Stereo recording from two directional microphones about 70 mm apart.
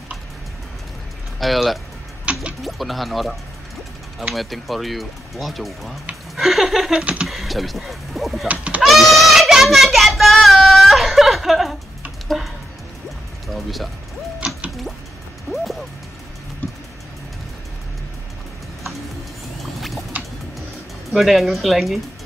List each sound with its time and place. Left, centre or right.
1.4 s speech: centre
2.3 s music: centre
2.6 s speech: centre
4.4 s speech: centre
8.5 s speech: right
8.8 s child singing: centre
12.3 s a sound: centre
13.5 s music: centre
15.5 s music: centre
19.6 s boat: centre
21.1 s speech: centre